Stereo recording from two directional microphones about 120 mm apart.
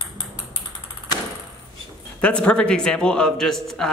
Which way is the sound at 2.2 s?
10° left (ahead or behind).